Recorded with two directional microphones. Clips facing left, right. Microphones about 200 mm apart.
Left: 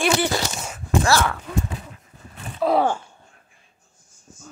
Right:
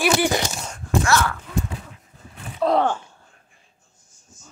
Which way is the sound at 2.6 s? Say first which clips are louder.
Even; 5° left (ahead or behind).